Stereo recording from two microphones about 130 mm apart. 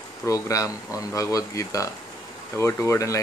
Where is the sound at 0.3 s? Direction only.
25° left (ahead or behind).